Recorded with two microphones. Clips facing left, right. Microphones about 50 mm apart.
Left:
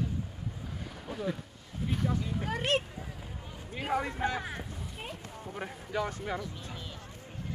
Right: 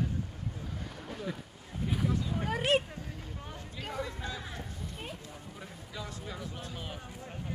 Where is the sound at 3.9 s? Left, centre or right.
Left.